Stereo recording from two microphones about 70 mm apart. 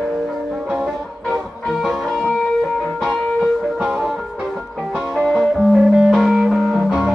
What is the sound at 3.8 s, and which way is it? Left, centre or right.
Music, centre.